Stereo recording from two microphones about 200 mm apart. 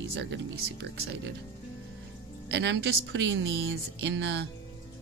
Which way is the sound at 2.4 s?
60° right (ahead or behind).